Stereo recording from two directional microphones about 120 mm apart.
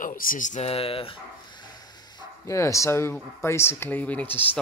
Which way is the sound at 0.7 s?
50° left (ahead or behind).